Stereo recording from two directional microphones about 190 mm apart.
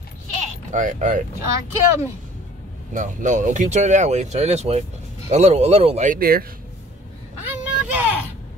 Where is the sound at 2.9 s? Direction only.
40° right (ahead or behind).